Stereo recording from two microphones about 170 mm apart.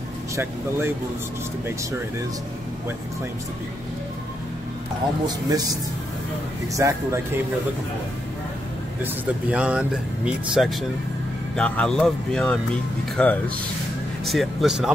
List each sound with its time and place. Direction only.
0.4 s speech: 15° right (ahead or behind)
5.2 s speech: 20° right (ahead or behind)
9.0 s speech: 5° right (ahead or behind)